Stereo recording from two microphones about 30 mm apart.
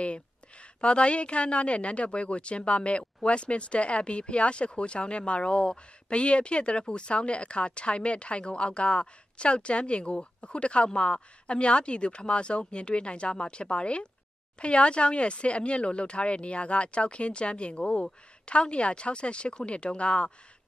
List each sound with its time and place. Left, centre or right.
0.7 s a woman's voice: left